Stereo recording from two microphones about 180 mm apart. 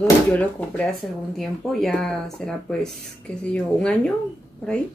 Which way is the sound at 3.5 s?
5° left (ahead or behind).